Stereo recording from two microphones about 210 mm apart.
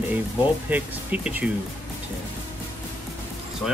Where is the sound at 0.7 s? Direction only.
5° right (ahead or behind).